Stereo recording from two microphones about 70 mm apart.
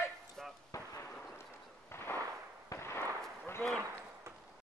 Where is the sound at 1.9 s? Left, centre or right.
Left.